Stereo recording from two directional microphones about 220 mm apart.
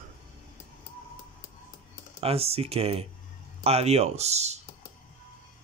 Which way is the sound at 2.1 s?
25° right (ahead or behind).